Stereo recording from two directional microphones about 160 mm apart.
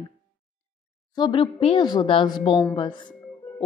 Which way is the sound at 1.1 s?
30° left (ahead or behind).